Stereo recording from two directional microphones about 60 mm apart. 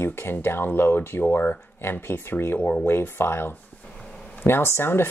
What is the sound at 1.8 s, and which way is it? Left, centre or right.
Speech, left.